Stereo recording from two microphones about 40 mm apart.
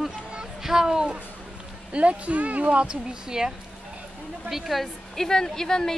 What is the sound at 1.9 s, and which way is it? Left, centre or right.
Speech, right.